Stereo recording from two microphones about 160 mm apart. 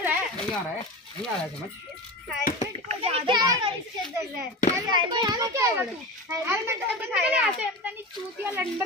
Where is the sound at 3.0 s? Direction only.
40° right (ahead or behind).